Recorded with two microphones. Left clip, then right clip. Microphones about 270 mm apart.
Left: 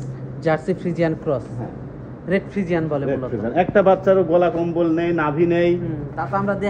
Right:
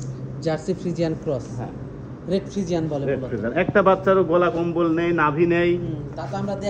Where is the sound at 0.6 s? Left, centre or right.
Centre.